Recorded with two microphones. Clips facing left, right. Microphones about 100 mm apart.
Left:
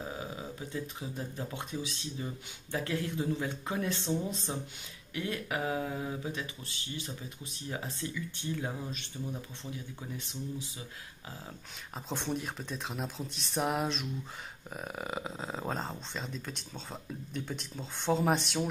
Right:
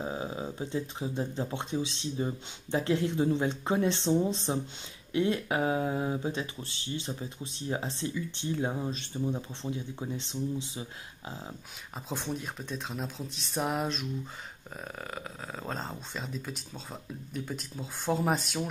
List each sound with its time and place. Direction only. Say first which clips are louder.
0.0 s speech: right 5 dB; 25° right (ahead or behind)
12.1 s speech: even; centre (ahead or behind); by 15.7 s 15° left (ahead or behind)
15.7 s speech: even; centre (ahead or behind)